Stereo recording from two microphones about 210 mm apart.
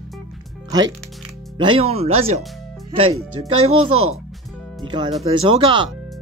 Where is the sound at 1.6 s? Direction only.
25° right (ahead or behind).